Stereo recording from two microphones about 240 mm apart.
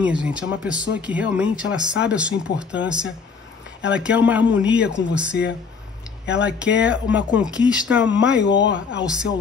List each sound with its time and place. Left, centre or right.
0.0 s speech: centre
8.4 s speech: left
8.7 s speech: centre